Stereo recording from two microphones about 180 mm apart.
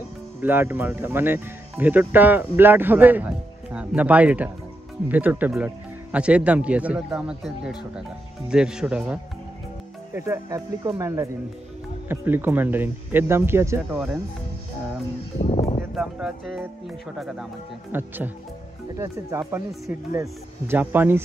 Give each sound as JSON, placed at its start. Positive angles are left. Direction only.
{"t": 0.4, "sound": "speech", "side_deg": -10}
{"t": 15.4, "sound": "speech", "side_deg": 40}
{"t": 15.9, "sound": "speech", "side_deg": 0}
{"t": 17.9, "sound": "speech", "side_deg": -10}